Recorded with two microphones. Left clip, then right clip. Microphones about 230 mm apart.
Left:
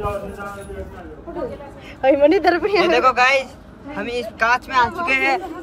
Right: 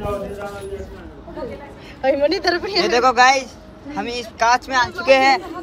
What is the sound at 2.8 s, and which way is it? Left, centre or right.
A woman's voice, centre.